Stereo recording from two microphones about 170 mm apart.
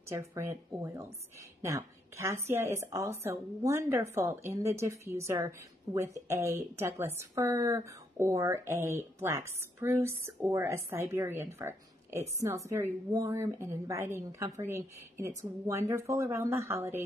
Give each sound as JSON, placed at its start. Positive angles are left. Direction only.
{"t": 0.1, "sound": "a woman's voice", "side_deg": -15}